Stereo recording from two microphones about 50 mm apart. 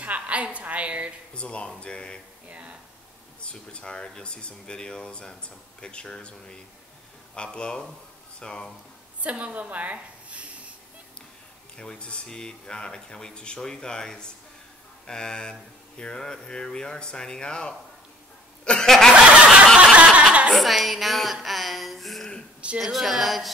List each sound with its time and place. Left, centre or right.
0.0 s a woman's voice: right
1.3 s speech: left
2.4 s a woman's voice: right
3.3 s speech: left
9.2 s a woman's voice: right
11.7 s speech: centre
18.6 s chuckle: centre
18.9 s speech: centre
19.1 s snicker: centre
20.2 s chuckle: centre
20.5 s a sound: centre
22.8 s a woman's voice: centre